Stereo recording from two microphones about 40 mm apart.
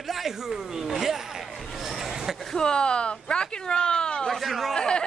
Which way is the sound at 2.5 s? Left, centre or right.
Centre.